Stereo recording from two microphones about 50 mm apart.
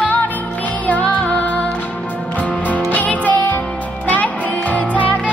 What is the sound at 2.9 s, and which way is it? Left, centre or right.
Music, left.